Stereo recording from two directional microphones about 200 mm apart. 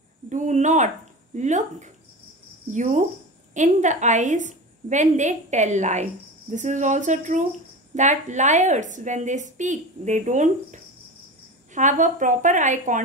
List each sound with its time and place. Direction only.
0.3 s a woman's voice: 35° right (ahead or behind)